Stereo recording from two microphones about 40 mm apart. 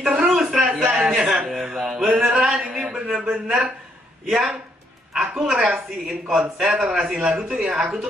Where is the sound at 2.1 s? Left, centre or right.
Centre.